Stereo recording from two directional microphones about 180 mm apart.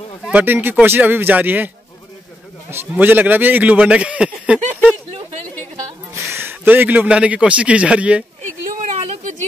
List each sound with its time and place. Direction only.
0.3 s a man's voice: 10° right (ahead or behind)
2.7 s a man's voice: 10° right (ahead or behind)
6.3 s a man's voice: 10° right (ahead or behind)
8.9 s a sound: 45° right (ahead or behind)